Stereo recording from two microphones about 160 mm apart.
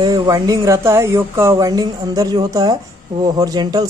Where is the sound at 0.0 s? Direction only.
25° right (ahead or behind).